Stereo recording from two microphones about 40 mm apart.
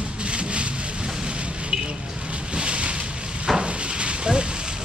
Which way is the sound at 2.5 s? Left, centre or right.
Right.